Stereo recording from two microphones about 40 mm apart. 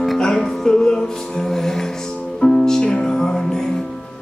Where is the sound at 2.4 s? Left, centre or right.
Centre.